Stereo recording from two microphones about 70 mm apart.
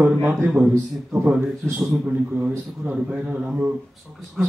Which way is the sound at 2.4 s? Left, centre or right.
Right.